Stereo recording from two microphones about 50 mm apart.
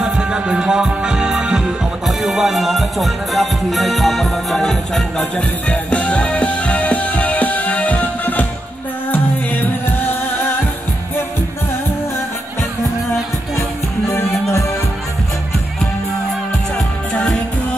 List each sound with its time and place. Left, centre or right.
0.0 s music: centre
5.7 s music: left
9.1 s music: left